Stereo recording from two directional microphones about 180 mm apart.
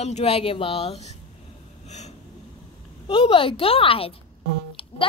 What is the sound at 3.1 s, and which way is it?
A woman's voice, 30° left (ahead or behind).